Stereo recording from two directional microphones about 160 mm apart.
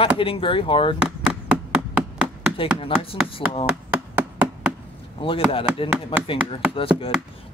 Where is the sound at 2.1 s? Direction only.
5° right (ahead or behind).